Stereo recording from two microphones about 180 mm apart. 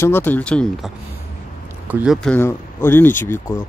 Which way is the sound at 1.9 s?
10° right (ahead or behind).